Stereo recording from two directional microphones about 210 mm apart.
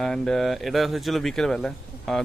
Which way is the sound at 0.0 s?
Centre (ahead or behind).